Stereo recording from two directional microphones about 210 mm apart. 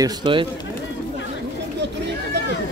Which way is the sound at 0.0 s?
25° right (ahead or behind).